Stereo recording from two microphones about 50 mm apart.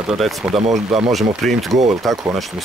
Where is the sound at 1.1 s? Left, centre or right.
Centre.